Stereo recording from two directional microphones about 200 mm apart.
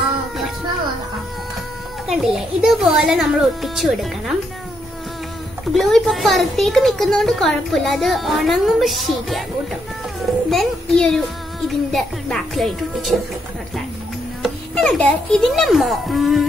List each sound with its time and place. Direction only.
2.0 s a child's voice: centre (ahead or behind)
5.7 s a child's voice: centre (ahead or behind)
10.5 s a child's voice: centre (ahead or behind)
14.4 s a child's voice: 5° left (ahead or behind)